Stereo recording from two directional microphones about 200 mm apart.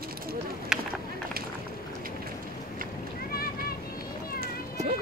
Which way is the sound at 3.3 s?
50° left (ahead or behind).